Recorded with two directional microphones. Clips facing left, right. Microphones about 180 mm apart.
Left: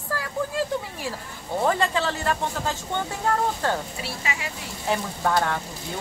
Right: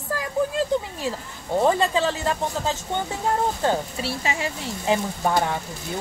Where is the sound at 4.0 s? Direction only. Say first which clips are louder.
Right 4 dB; 30° right (ahead or behind).